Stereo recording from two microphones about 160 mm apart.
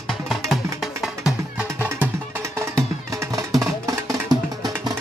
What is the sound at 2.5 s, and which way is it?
Music, 20° right (ahead or behind).